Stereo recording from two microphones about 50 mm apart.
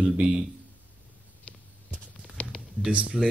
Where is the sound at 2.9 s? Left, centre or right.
Right.